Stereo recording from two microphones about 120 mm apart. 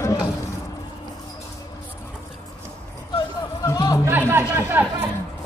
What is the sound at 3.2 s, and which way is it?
Music, 30° left (ahead or behind).